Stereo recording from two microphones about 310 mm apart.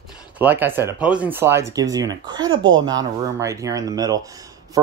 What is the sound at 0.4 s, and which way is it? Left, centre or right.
Speech, centre.